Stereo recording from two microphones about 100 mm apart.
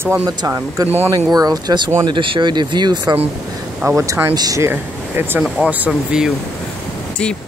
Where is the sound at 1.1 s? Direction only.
40° right (ahead or behind).